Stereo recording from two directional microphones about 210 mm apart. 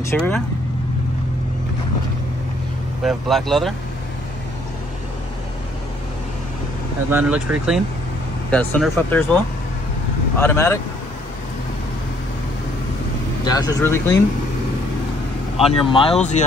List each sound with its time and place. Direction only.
0.0 s speech: 10° left (ahead or behind)
3.0 s speech: centre (ahead or behind)
7.1 s speech: 5° right (ahead or behind)
8.5 s speech: 5° left (ahead or behind)
10.4 s speech: 10° left (ahead or behind)
13.4 s speech: 20° left (ahead or behind)
15.6 s speech: 25° left (ahead or behind)